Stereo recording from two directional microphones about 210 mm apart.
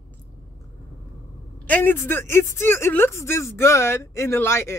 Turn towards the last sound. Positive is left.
turn(degrees=10)  # may be behind; listen again after turning